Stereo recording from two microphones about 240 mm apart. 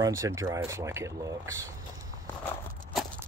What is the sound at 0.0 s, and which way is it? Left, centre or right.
Speech, centre.